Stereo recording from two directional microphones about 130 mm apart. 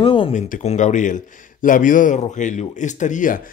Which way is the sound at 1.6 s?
90° left.